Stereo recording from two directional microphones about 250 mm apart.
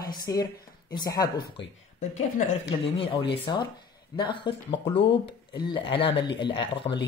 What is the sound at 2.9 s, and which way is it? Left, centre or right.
Speech, centre.